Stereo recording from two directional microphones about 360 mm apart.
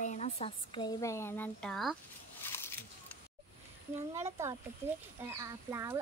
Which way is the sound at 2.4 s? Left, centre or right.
Centre.